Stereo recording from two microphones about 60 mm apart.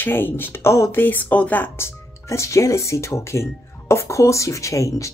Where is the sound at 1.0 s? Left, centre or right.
Left.